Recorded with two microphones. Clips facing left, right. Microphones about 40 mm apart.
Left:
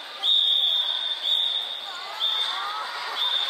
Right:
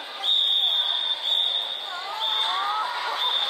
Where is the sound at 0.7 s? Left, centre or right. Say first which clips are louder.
Right 1 dB; centre; by 3.2 s right.